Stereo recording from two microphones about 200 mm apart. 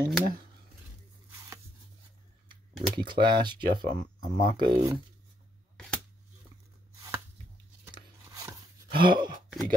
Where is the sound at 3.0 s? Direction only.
20° right (ahead or behind).